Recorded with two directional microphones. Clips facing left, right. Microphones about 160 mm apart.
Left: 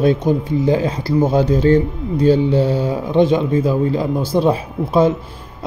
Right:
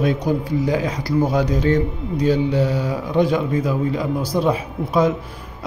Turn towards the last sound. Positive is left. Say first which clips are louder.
# left 3 dB
turn(degrees=30)  # may be behind; listen again after turning